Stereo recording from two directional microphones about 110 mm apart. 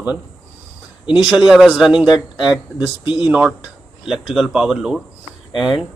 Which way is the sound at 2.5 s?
50° left (ahead or behind).